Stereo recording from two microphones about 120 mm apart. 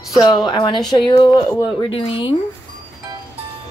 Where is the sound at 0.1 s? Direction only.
40° left (ahead or behind).